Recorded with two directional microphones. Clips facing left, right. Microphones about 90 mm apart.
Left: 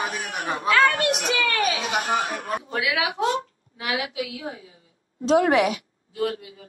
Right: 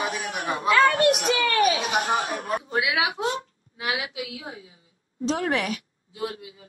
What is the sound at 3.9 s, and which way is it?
Speech, 50° left (ahead or behind).